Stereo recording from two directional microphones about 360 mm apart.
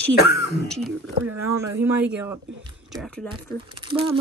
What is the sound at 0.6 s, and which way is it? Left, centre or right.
Speech, centre.